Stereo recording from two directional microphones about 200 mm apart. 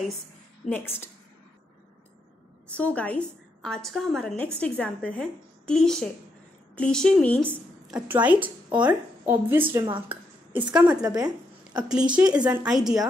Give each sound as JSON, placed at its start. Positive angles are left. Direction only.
{"t": 0.7, "sound": "a woman's voice", "side_deg": 10}
{"t": 2.7, "sound": "a woman's voice", "side_deg": 5}
{"t": 7.9, "sound": "speech", "side_deg": -10}
{"t": 11.0, "sound": "speech", "side_deg": -20}
{"t": 12.2, "sound": "a woman's voice", "side_deg": -5}